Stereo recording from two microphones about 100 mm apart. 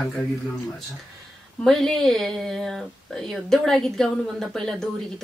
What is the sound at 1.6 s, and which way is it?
Speech, 5° left (ahead or behind).